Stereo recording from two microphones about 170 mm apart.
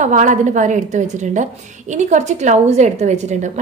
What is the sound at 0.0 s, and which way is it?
A woman's voice, 45° right (ahead or behind).